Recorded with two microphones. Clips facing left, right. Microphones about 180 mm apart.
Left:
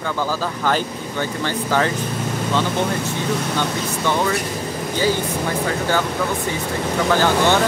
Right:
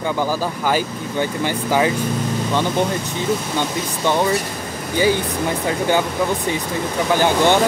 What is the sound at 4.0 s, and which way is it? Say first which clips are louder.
Speech: right 3 dB; 15° right (ahead or behind).